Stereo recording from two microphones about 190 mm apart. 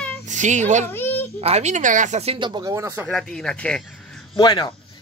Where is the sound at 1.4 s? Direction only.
35° right (ahead or behind); by 3.0 s 15° right (ahead or behind).